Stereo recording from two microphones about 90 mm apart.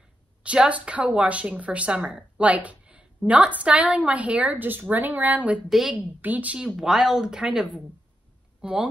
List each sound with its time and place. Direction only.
0.4 s a woman's voice: 15° right (ahead or behind)
5.7 s speech: centre (ahead or behind)
6.2 s a woman's voice: 15° right (ahead or behind)